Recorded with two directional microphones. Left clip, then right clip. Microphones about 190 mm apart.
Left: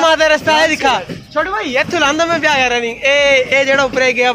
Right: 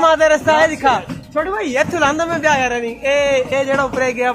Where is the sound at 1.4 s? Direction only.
25° right (ahead or behind).